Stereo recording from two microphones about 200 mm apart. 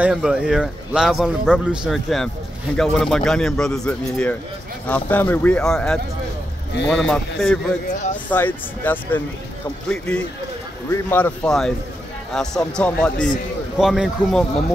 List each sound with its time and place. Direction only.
0.0 s a man's voice: 5° right (ahead or behind)